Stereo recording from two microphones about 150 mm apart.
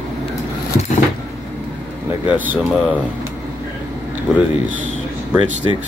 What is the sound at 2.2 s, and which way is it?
Speech, 10° right (ahead or behind).